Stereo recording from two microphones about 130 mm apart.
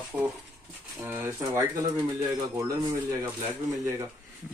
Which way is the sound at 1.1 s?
20° right (ahead or behind).